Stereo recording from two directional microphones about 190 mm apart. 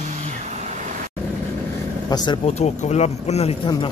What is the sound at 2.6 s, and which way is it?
Speech, 35° left (ahead or behind).